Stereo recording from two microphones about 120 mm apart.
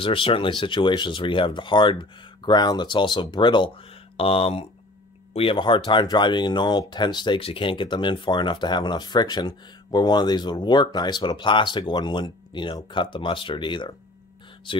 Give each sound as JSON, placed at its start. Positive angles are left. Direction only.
{"t": 0.0, "sound": "speech", "side_deg": 50}
{"t": 4.2, "sound": "speech", "side_deg": 55}